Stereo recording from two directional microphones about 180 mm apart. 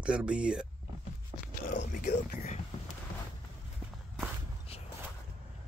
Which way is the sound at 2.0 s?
40° left (ahead or behind).